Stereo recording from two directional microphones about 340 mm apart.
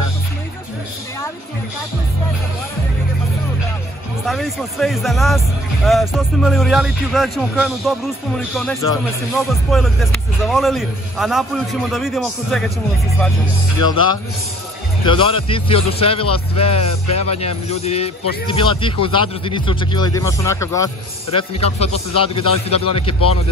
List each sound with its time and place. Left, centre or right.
4.3 s speech: centre
9.3 s speech: centre
15.0 s a man's voice: centre